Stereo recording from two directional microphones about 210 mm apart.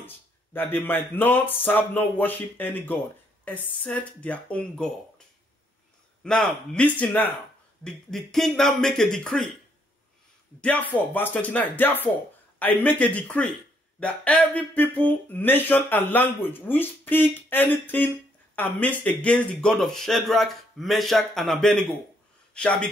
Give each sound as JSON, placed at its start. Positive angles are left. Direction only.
{"t": 0.0, "sound": "speech", "side_deg": 10}
{"t": 6.2, "sound": "speech", "side_deg": 5}
{"t": 10.6, "sound": "speech", "side_deg": 5}